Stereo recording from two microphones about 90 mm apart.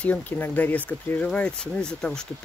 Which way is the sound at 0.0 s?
15° left (ahead or behind).